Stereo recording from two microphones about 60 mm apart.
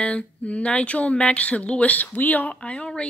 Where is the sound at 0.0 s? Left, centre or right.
Left.